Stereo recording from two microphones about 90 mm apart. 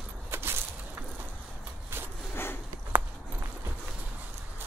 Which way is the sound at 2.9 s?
25° right (ahead or behind).